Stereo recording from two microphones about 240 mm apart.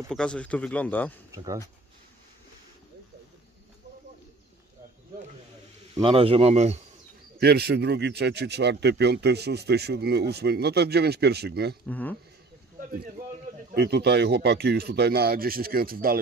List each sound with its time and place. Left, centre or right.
0.1 s speech: centre
1.3 s speech: centre
5.9 s a man's voice: right
7.3 s speech: right
11.9 s speech: centre
13.7 s speech: right